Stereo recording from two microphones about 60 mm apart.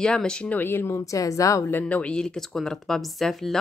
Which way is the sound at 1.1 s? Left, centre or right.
Left.